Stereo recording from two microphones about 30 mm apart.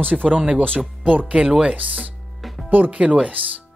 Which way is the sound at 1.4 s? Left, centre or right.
Right.